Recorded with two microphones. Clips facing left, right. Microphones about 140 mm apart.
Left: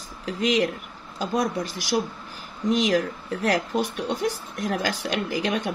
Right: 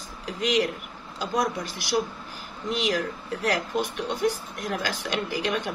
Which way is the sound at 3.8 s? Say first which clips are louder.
Left 1 dB; 45° left (ahead or behind).